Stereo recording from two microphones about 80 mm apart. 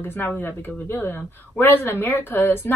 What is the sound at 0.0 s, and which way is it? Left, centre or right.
A woman's voice, left.